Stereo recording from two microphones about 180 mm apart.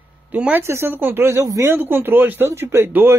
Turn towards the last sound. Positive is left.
turn(degrees=-15)  # may be behind; listen again after turning